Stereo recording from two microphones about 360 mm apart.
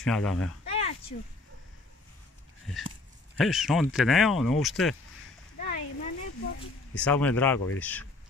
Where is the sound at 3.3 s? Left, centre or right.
Centre.